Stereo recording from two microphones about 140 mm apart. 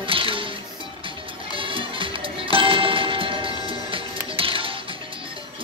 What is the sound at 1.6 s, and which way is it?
Music, 40° right (ahead or behind).